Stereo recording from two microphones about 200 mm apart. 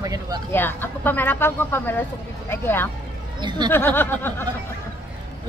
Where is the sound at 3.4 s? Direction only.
20° right (ahead or behind).